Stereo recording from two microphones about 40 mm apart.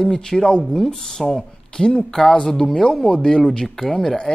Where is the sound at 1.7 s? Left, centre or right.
Centre.